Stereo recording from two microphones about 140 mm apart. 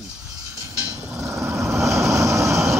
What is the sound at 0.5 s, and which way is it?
Vehicle, 20° right (ahead or behind).